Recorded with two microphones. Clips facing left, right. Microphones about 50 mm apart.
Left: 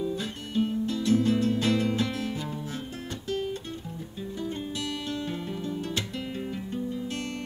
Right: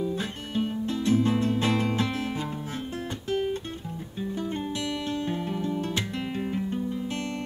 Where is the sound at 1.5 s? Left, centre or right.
Right.